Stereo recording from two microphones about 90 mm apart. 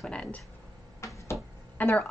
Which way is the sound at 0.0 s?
10° left (ahead or behind).